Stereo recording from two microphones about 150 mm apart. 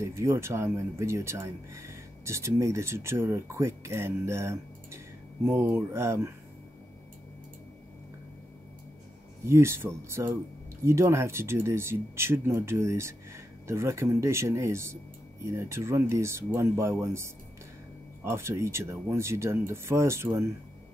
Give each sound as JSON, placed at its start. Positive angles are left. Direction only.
{"t": 0.0, "sound": "speech", "side_deg": -20}
{"t": 9.5, "sound": "speech", "side_deg": -15}